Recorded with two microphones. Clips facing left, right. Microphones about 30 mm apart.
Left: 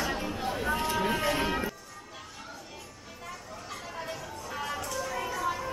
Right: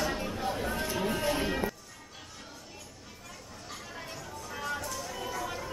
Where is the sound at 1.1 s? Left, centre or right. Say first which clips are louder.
Even; left.